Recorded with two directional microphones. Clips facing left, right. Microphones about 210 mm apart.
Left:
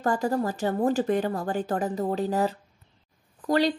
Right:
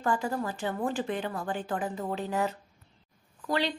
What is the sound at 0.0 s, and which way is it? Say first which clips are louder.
Speech: left 5 dB; 40° left (ahead or behind).